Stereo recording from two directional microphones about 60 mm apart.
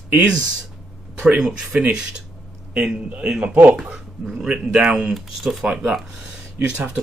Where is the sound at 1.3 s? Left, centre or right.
Centre.